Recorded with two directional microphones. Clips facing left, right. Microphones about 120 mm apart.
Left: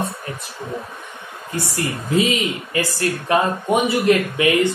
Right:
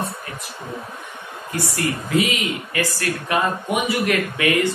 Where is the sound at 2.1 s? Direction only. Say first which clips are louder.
Left 3 dB; 25° left (ahead or behind).